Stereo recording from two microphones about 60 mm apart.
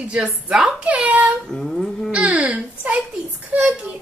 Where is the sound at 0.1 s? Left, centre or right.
Centre.